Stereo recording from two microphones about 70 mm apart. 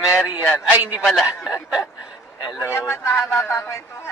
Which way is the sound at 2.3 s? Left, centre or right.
Left.